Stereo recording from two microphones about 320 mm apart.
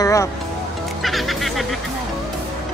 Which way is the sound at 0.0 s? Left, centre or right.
Centre.